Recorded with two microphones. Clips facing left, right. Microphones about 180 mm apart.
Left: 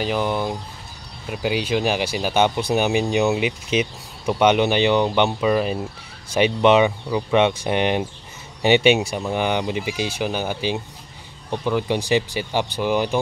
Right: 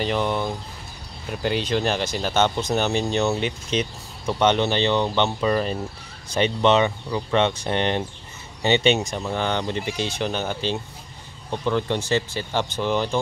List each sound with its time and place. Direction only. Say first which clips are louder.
0.0 s speech: left 1 dB; 5° left (ahead or behind)